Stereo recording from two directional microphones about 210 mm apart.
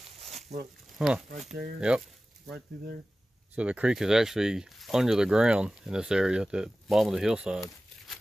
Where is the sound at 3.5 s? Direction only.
5° right (ahead or behind).